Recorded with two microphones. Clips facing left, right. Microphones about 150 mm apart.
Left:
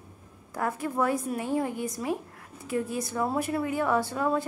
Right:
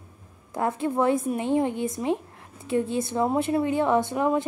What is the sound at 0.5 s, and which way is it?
A woman's voice, 25° right (ahead or behind).